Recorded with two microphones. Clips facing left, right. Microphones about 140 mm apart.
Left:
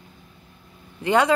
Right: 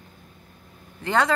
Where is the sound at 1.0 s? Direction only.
15° left (ahead or behind).